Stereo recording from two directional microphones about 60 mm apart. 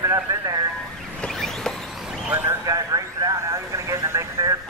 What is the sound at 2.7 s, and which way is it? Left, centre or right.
Vehicle, right.